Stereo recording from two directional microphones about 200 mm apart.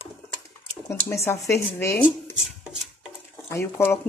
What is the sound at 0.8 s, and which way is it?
Speech, 15° left (ahead or behind).